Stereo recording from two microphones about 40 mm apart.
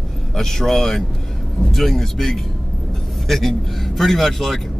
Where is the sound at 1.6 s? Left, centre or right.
Left.